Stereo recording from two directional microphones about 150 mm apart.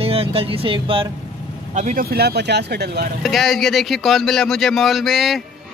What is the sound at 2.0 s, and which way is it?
Speech, 90° right.